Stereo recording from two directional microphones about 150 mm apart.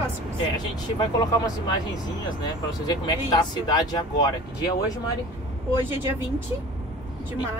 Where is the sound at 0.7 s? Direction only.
25° left (ahead or behind).